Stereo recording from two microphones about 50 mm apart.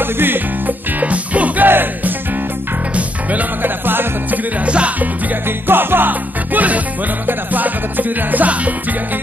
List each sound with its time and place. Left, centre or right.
0.0 s music: right
1.0 s music: right
1.7 s music: right
3.0 s music: right
4.6 s music: right
5.7 s music: right